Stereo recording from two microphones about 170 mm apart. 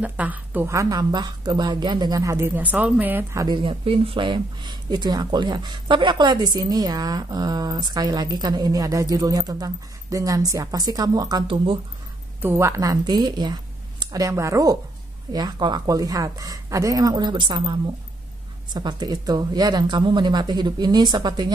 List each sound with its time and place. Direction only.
0.0 s speech: 10° right (ahead or behind)
3.4 s speech: 30° right (ahead or behind)
12.4 s speech: 15° right (ahead or behind)